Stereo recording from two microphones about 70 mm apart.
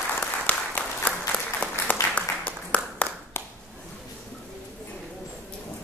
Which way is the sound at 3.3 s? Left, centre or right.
Left.